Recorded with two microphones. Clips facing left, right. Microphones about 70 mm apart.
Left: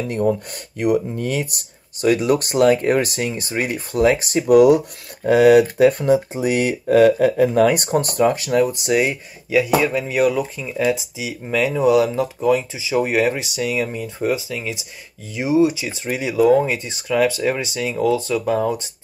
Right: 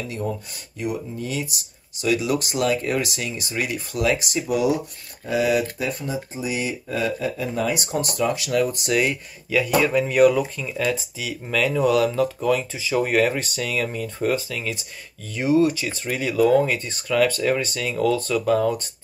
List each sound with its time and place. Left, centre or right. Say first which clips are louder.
0.1 s speech: left 9 dB; left
4.5 s speech: left 11 dB; left
8.6 s speech: left 3 dB; centre